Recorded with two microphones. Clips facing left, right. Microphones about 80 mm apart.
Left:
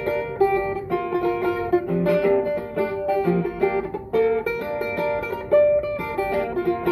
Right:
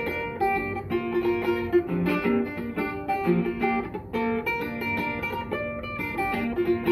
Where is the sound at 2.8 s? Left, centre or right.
Left.